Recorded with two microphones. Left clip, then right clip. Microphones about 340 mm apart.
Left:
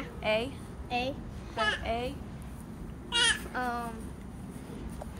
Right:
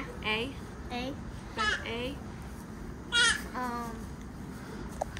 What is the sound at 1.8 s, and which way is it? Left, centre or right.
Speech, left.